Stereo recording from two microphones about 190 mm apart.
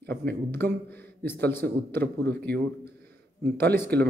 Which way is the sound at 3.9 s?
60° right (ahead or behind).